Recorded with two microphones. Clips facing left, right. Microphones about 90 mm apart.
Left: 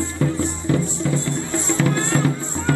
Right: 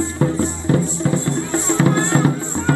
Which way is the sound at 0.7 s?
35° right (ahead or behind).